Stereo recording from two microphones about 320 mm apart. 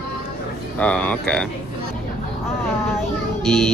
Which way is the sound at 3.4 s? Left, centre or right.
Centre.